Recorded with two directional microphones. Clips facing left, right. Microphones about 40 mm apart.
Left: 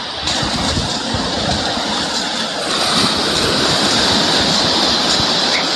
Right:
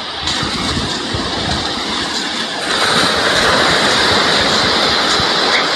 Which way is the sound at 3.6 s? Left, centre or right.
Right.